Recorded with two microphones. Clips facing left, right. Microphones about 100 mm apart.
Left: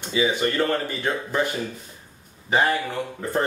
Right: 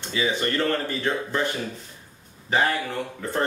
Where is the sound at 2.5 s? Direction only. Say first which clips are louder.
Left 2 dB; 10° left (ahead or behind).